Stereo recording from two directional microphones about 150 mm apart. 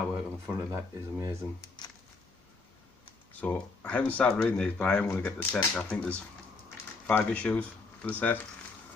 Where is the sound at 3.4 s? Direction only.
10° left (ahead or behind).